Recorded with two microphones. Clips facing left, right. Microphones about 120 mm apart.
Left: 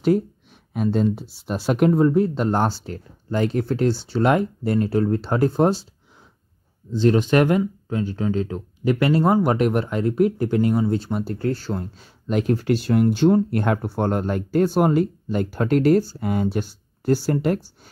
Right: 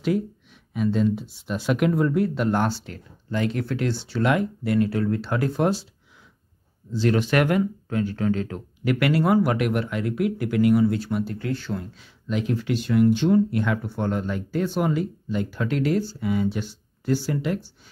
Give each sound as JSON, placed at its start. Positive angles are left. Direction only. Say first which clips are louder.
{"t": 0.7, "sound": "speech", "louder": "left 1 dB", "side_deg": 40}
{"t": 6.9, "sound": "speech", "louder": "left 4 dB", "side_deg": 20}